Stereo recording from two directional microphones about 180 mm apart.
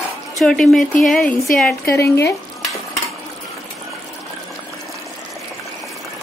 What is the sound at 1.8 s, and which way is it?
Stir, 15° left (ahead or behind).